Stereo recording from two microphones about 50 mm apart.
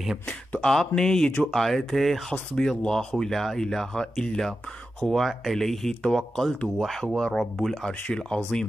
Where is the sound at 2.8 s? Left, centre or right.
Centre.